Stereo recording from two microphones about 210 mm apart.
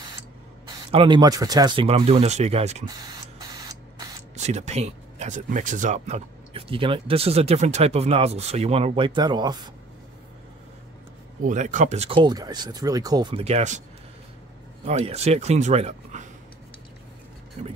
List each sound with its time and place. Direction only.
0.7 s speech: 25° right (ahead or behind)
2.9 s printer: 20° right (ahead or behind)
4.4 s speech: 30° right (ahead or behind)
11.4 s speech: 35° right (ahead or behind)
14.9 s speech: 30° right (ahead or behind)
17.6 s speech: 30° right (ahead or behind)